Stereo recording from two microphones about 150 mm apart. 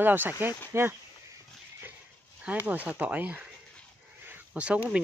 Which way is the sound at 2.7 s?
10° right (ahead or behind).